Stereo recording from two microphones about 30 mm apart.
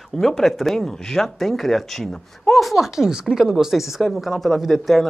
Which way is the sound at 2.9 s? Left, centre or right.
Right.